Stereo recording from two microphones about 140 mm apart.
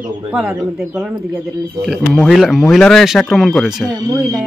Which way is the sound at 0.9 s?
15° right (ahead or behind).